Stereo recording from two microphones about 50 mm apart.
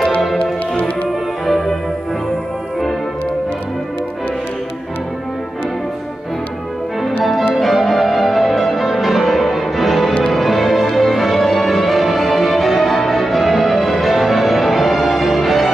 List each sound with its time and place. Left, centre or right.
0.4 s music: left
1.4 s music: centre
7.0 s music: centre